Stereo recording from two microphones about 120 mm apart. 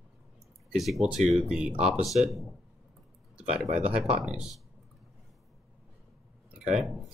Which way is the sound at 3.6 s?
65° right (ahead or behind).